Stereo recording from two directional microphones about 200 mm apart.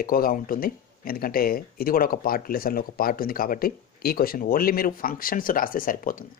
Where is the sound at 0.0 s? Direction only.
45° left (ahead or behind).